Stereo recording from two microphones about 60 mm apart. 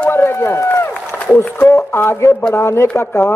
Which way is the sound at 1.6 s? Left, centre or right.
Left.